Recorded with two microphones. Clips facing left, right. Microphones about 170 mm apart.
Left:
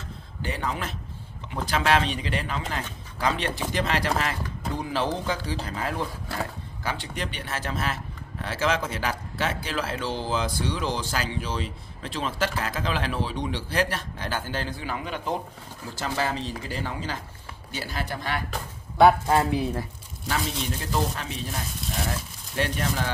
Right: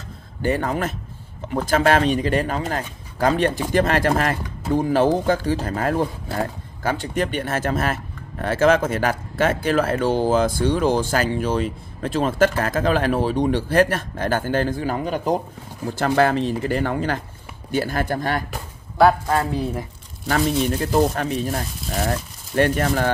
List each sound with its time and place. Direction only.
0.4 s speech: 50° right (ahead or behind)
15.9 s speech: 60° right (ahead or behind)
18.5 s a sound: centre (ahead or behind)
20.2 s speech: 50° right (ahead or behind)